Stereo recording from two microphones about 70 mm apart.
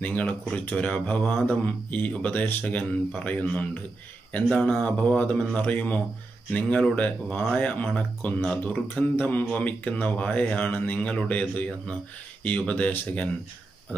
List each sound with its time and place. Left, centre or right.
0.0 s speech: left